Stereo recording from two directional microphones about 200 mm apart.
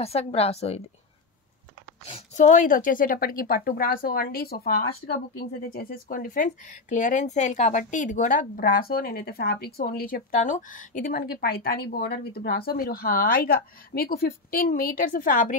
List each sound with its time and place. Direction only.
0.0 s speech: 30° left (ahead or behind)
2.0 s speech: 35° left (ahead or behind)